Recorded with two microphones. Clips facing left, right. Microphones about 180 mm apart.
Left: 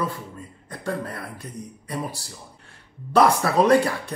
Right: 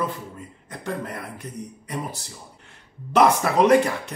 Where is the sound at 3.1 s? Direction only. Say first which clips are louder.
Even; 15° right (ahead or behind).